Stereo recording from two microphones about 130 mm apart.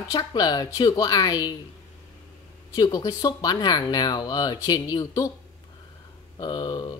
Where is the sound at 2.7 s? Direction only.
30° left (ahead or behind).